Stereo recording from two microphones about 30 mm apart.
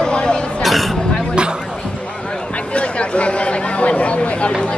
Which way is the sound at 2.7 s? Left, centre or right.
Left.